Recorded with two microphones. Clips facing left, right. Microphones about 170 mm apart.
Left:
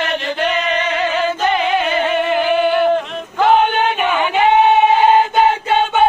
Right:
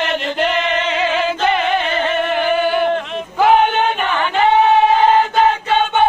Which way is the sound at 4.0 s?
10° left (ahead or behind).